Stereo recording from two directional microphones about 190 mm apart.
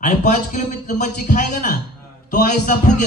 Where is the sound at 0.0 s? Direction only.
40° left (ahead or behind).